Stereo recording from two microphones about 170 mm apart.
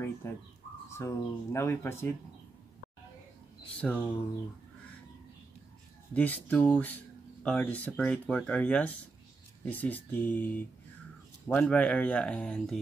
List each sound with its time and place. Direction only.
0.2 s speech: 15° left (ahead or behind)
3.8 s speech: 10° left (ahead or behind)
6.1 s speech: 10° left (ahead or behind)